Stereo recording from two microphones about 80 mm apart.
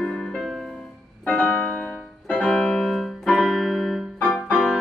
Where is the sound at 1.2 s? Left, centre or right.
Centre.